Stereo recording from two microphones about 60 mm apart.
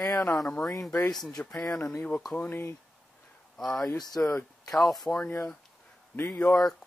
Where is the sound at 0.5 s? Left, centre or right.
Centre.